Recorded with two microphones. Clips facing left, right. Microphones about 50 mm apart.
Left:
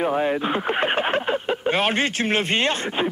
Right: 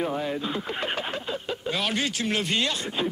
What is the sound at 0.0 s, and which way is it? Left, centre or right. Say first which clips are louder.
Speech: left 6 dB; left.